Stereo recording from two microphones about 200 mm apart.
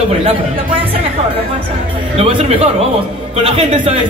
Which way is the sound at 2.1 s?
30° right (ahead or behind).